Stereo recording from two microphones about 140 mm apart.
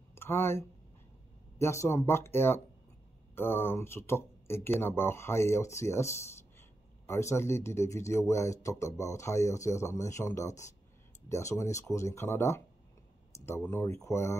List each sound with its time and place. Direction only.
0.1 s speech: 15° left (ahead or behind)